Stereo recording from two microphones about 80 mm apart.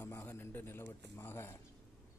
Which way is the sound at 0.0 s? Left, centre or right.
Left.